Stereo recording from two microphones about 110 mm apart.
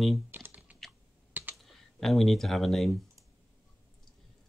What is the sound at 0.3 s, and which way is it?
Computer keyboard, 15° right (ahead or behind).